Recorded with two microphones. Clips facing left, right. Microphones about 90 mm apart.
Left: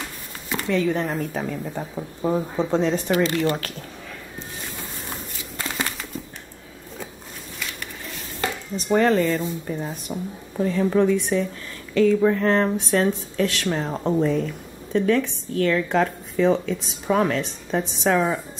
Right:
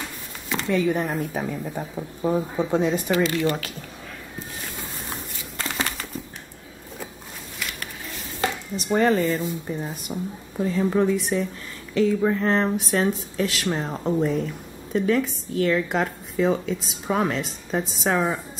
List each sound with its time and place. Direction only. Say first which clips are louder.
0.7 s speech: even; 10° right (ahead or behind)
1.8 s speech: even; 5° left (ahead or behind)
2.7 s speech: left 1 dB; 10° right (ahead or behind)
3.3 s speech: left 1 dB; 20° left (ahead or behind)
5.6 s a sound: even; 5° left (ahead or behind)
8.8 s speech: left 1 dB; 5° right (ahead or behind)
13.9 s speech: left 3 dB; 10° left (ahead or behind)
14.9 s speech: left 2 dB; 10° right (ahead or behind)